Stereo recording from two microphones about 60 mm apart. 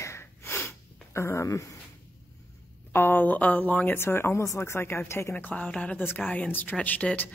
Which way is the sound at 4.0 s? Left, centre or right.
Left.